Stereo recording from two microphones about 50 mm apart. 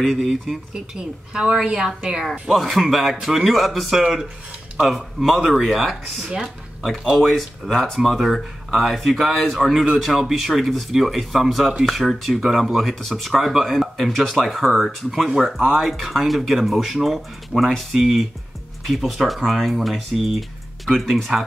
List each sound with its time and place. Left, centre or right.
0.0 s speech: centre
1.3 s a woman's voice: centre
2.4 s speech: centre
6.2 s a woman's voice: centre
7.2 s speech: centre